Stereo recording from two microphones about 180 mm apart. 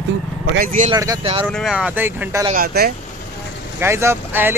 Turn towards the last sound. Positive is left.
turn(degrees=-10)  # may be behind; listen again after turning